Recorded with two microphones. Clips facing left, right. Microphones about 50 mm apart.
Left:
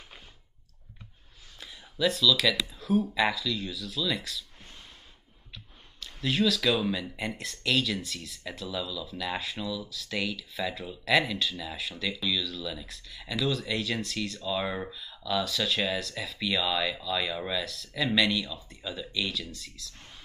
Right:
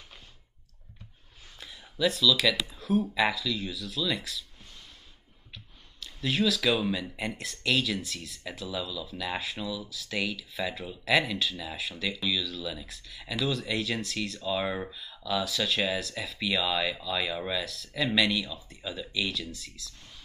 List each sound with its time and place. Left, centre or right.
1.6 s speech: centre
5.5 s speech: centre